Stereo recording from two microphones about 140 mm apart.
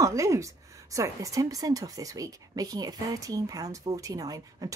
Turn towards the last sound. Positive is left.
turn(degrees=-25)  # may be behind; listen again after turning